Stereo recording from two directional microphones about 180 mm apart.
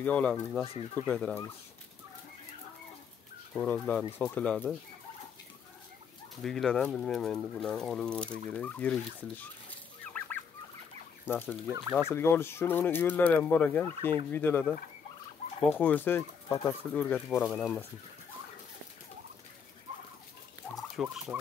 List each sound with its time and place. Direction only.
0.0 s speech: 5° left (ahead or behind)
3.5 s speech: 10° left (ahead or behind)
6.4 s speech: 5° left (ahead or behind)
8.5 s fowl: 5° left (ahead or behind)
11.2 s speech: 10° left (ahead or behind)
20.9 s fowl: 5° right (ahead or behind)